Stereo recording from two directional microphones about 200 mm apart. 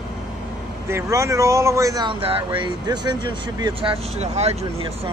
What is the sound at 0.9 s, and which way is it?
Speech, 15° right (ahead or behind).